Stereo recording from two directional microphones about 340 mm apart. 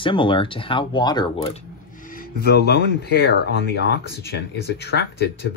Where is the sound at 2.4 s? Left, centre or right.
Left.